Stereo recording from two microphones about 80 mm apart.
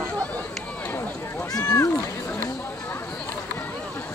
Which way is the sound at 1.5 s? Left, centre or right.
Left.